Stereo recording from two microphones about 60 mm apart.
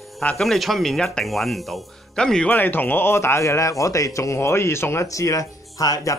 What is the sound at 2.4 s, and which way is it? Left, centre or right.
Speech, left.